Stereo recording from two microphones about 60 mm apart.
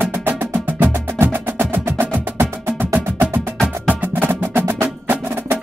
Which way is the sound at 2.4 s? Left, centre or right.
Right.